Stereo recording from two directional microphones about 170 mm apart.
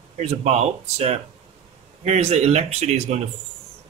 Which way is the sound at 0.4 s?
40° right (ahead or behind).